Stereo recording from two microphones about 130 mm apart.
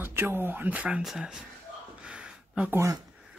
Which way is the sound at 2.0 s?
5° right (ahead or behind).